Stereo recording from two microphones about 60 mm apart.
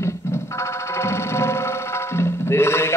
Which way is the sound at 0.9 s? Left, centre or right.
Left.